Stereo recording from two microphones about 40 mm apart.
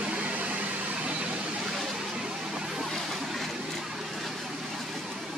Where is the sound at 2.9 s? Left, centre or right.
Centre.